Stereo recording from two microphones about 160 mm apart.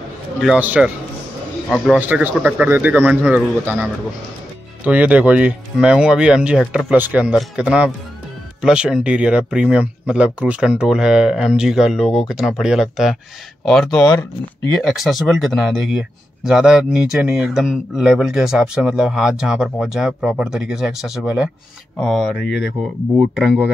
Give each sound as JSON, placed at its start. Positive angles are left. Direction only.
{"t": 0.4, "sound": "speech", "side_deg": -5}
{"t": 2.0, "sound": "speech", "side_deg": -10}
{"t": 13.9, "sound": "speech", "side_deg": 25}
{"t": 14.8, "sound": "speech", "side_deg": 0}